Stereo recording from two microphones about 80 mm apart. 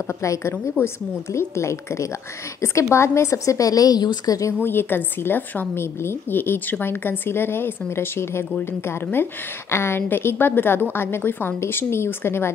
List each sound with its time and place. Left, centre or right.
0.2 s a woman's voice: left
4.6 s a woman's voice: left